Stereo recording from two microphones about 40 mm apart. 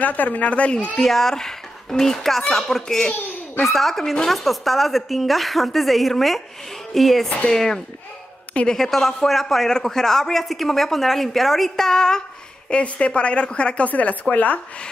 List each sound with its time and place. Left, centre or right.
0.0 s speech: left
1.0 s a child's voice: centre
7.4 s speech: centre
12.6 s a woman's voice: left